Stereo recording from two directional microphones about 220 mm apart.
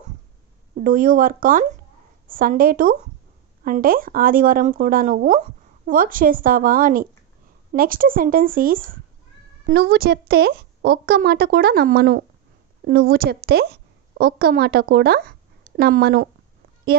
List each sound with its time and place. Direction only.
0.7 s a woman's voice: 40° right (ahead or behind)